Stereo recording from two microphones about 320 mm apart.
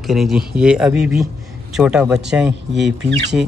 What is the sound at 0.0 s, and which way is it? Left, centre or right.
A man's voice, centre.